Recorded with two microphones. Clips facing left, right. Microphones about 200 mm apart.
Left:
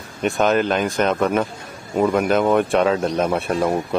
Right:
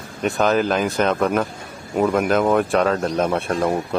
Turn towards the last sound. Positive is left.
turn(degrees=5)  # may be behind; listen again after turning